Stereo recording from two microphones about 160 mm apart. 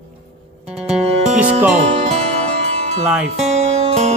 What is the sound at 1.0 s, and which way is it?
Music, 40° right (ahead or behind).